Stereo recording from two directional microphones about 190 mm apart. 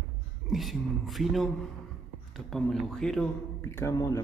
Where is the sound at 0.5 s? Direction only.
Centre (ahead or behind).